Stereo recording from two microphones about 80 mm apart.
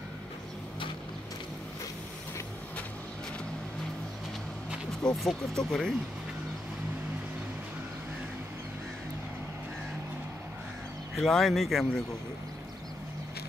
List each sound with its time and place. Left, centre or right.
5.0 s speech: centre
11.1 s speech: centre